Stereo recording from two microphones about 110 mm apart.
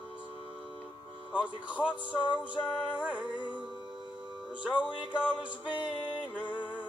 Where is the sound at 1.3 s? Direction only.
10° right (ahead or behind).